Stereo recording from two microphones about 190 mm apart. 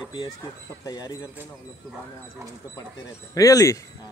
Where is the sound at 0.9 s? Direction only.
20° left (ahead or behind).